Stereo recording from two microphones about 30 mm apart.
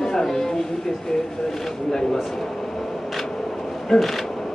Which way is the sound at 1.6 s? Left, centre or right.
Centre.